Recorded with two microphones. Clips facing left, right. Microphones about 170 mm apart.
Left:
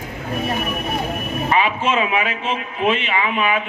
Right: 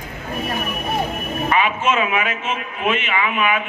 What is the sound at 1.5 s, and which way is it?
A man's voice, 30° left (ahead or behind).